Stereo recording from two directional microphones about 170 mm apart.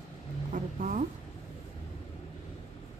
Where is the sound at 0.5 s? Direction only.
50° right (ahead or behind).